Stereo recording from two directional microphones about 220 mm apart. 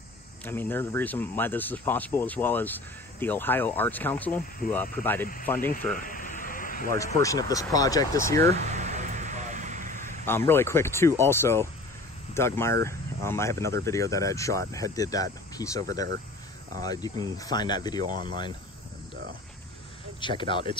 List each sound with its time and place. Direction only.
0.5 s speech: 10° left (ahead or behind)
5.9 s a sound: 40° left (ahead or behind)
6.9 s speech: 15° left (ahead or behind)
8.7 s vehicle: 30° right (ahead or behind)
10.2 s speech: 10° left (ahead or behind)
18.1 s speech: 40° right (ahead or behind)
20.2 s speech: 20° left (ahead or behind)